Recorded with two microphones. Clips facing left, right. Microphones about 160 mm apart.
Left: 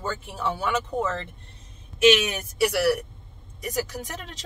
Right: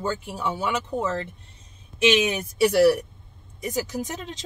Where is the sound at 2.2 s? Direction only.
25° right (ahead or behind).